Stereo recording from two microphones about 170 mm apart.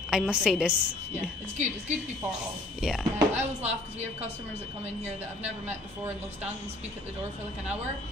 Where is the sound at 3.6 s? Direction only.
40° right (ahead or behind).